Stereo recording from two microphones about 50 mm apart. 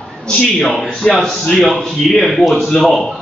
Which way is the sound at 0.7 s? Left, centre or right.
Centre.